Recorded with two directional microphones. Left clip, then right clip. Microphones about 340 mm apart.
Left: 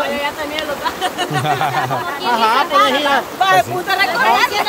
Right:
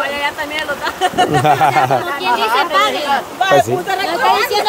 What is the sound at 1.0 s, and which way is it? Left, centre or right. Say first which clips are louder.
Speech: right 9 dB; centre.